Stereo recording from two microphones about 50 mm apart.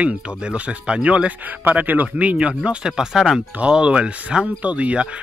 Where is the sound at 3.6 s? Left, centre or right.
Centre.